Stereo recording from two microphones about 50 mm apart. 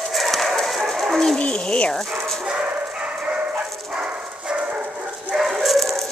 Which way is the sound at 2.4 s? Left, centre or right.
Right.